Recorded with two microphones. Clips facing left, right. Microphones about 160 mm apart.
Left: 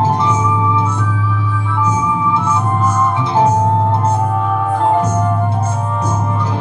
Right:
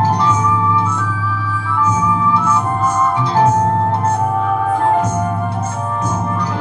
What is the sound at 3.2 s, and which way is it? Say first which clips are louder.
Music: even; 25° left (ahead or behind).